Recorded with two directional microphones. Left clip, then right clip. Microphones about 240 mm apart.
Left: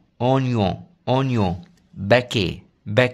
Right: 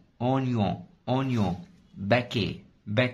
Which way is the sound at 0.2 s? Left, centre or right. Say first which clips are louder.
Left 7 dB; left.